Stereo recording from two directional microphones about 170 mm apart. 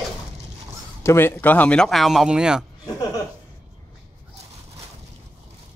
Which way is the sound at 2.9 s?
20° left (ahead or behind).